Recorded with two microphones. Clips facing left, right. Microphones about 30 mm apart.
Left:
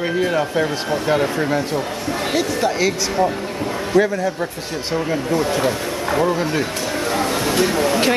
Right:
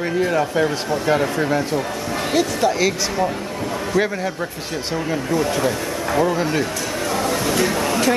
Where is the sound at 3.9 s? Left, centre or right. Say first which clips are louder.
Left 4 dB; left.